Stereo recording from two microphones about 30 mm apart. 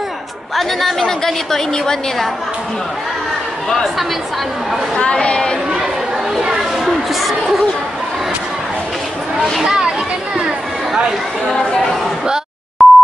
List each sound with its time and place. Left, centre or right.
0.6 s speech: centre
0.9 s a woman's voice: centre
4.9 s a woman's voice: left
6.4 s a sound: centre
7.2 s speech: centre
12.8 s busy signal: centre